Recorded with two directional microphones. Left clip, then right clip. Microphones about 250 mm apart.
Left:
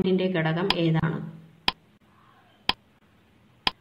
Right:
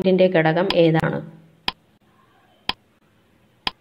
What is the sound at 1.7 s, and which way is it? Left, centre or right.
Tick, centre.